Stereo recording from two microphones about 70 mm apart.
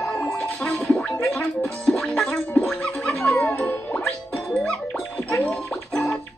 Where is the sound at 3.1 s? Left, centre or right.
Left.